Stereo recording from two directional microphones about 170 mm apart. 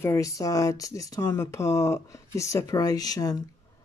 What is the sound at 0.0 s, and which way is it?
Speech, 15° left (ahead or behind).